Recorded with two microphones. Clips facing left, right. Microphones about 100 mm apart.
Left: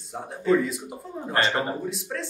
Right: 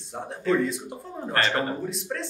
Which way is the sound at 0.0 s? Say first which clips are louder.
Even; centre (ahead or behind).